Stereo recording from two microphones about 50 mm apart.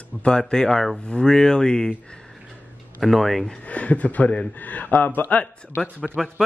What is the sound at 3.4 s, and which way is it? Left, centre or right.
Speech, left.